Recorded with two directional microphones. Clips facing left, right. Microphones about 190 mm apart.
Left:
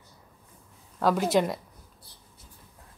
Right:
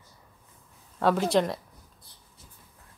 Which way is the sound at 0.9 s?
Centre (ahead or behind).